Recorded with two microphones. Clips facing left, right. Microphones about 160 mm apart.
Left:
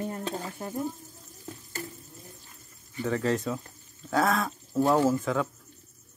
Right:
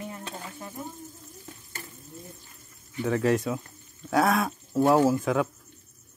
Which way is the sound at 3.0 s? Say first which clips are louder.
Right 3 dB; 15° right (ahead or behind).